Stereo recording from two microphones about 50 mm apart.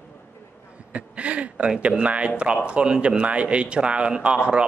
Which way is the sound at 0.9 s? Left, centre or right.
Right.